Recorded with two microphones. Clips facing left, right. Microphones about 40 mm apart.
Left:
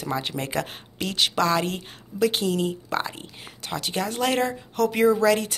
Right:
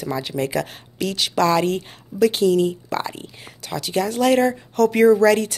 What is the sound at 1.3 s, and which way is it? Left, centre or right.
A woman's voice, centre.